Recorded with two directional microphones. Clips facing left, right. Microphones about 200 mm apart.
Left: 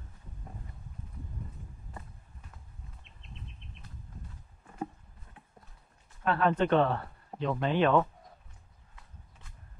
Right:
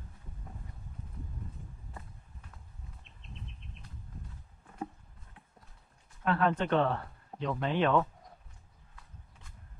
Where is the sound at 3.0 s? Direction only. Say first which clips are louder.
Right 1 dB; centre (ahead or behind).